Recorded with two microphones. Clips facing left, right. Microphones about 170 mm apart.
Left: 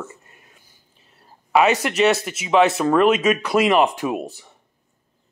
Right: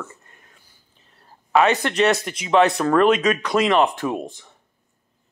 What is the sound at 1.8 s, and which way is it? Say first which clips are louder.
Speech: left 1 dB; 5° left (ahead or behind).